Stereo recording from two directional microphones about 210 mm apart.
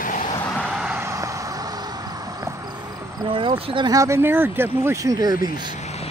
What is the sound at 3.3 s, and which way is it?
Speech, 25° right (ahead or behind).